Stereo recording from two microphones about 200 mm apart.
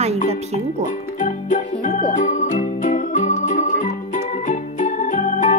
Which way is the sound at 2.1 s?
40° left (ahead or behind).